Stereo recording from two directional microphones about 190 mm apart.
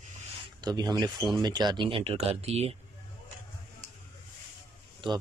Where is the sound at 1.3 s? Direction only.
20° right (ahead or behind).